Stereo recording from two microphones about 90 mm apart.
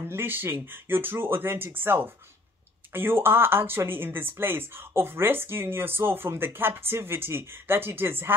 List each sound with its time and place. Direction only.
0.0 s speech: 25° right (ahead or behind)